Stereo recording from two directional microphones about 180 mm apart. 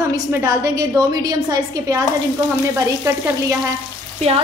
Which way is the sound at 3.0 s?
15° right (ahead or behind).